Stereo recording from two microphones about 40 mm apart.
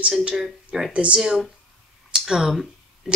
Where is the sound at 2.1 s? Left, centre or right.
Centre.